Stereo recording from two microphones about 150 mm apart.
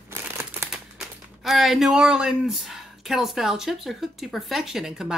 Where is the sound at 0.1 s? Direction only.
15° right (ahead or behind).